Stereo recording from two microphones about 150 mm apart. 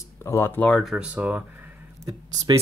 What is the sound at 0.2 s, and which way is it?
Speech, 15° left (ahead or behind).